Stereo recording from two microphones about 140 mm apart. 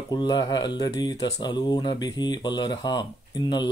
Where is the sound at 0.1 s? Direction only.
30° left (ahead or behind).